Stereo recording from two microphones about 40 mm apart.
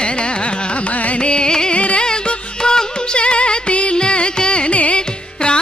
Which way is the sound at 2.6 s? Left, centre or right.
Left.